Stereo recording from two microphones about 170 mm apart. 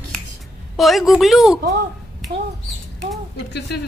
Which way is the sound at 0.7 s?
Centre (ahead or behind).